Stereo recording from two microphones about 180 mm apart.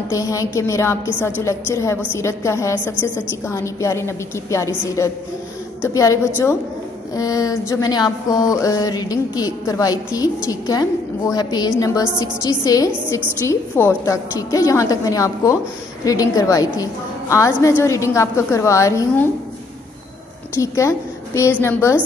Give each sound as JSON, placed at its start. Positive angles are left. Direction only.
{"t": 0.1, "sound": "a woman's voice", "side_deg": 20}
{"t": 7.2, "sound": "a sound", "side_deg": 20}
{"t": 12.2, "sound": "a woman's voice", "side_deg": 20}
{"t": 20.6, "sound": "a woman's voice", "side_deg": 15}